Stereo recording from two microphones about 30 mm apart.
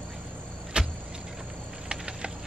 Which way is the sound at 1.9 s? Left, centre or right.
Right.